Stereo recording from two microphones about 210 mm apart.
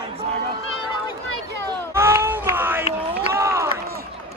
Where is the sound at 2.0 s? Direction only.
10° right (ahead or behind).